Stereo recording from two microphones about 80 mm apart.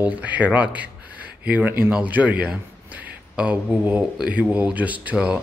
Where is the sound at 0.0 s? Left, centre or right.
Centre.